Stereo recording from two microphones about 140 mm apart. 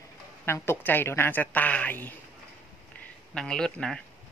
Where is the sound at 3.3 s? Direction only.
5° left (ahead or behind).